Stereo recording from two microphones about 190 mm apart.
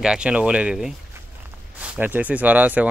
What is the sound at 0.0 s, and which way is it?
Speech, 5° right (ahead or behind).